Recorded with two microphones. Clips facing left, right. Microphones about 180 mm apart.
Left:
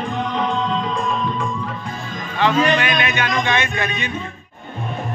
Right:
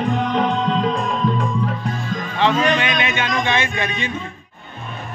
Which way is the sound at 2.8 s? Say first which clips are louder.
Left 1 dB; 25° right (ahead or behind).